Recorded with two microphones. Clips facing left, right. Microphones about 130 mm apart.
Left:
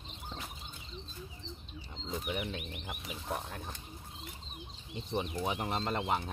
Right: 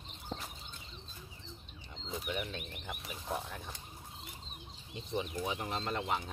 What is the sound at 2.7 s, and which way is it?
Speech, 5° left (ahead or behind).